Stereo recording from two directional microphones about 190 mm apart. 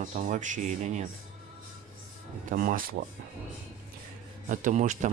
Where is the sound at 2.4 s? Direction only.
45° right (ahead or behind).